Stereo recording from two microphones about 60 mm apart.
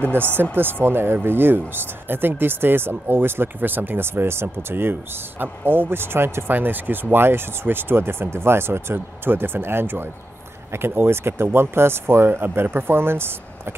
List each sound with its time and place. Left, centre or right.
0.0 s speech: right